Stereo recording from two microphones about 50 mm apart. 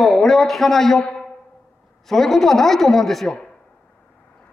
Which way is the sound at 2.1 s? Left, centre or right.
Centre.